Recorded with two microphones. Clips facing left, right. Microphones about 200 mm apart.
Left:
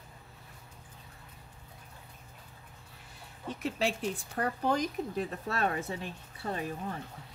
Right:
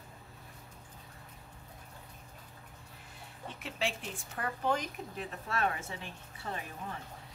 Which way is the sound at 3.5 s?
40° left (ahead or behind).